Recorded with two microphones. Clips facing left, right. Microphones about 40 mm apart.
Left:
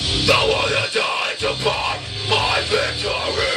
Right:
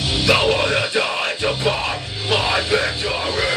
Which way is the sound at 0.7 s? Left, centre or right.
Centre.